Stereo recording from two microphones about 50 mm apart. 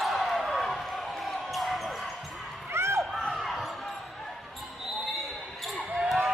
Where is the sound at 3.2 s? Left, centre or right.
Centre.